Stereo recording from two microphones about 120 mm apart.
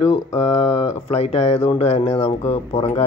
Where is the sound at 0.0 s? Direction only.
55° left (ahead or behind).